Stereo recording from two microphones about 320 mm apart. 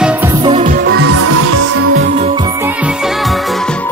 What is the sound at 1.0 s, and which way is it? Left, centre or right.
Music, right.